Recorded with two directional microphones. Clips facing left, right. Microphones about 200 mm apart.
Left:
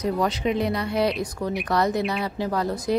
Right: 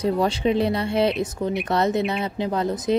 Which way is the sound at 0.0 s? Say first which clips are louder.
Right 3 dB; 30° right (ahead or behind).